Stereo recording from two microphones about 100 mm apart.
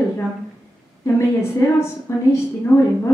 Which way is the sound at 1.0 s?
30° left (ahead or behind).